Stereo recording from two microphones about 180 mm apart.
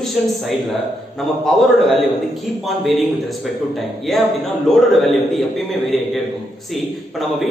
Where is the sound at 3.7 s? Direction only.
Centre (ahead or behind).